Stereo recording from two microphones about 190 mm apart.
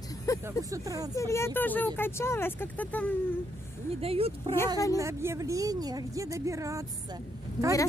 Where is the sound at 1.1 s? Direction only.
15° left (ahead or behind).